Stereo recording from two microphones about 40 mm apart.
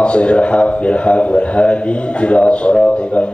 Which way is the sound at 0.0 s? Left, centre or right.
Left.